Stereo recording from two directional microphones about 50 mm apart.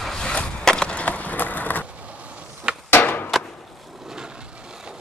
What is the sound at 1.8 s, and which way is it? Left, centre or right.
Vehicle, right.